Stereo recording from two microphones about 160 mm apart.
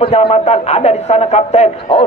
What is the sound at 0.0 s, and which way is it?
A man's voice, 35° left (ahead or behind).